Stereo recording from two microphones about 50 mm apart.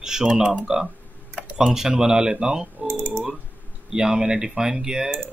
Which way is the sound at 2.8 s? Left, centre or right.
Right.